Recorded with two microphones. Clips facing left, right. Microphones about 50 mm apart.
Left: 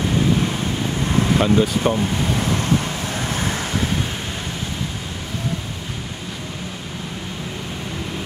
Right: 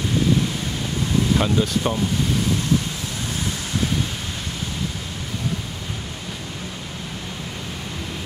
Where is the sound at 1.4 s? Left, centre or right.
Centre.